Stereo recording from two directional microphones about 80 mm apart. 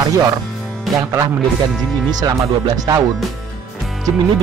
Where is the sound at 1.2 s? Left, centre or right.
Right.